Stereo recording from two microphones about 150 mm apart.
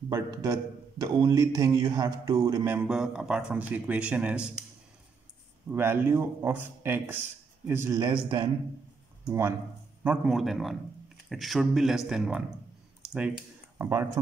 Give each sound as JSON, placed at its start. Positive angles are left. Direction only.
{"t": 0.1, "sound": "a man's voice", "side_deg": -25}
{"t": 5.7, "sound": "speech", "side_deg": -15}
{"t": 8.0, "sound": "a man's voice", "side_deg": -30}
{"t": 9.3, "sound": "speech", "side_deg": -15}
{"t": 10.0, "sound": "speech", "side_deg": -5}
{"t": 13.7, "sound": "speech", "side_deg": -15}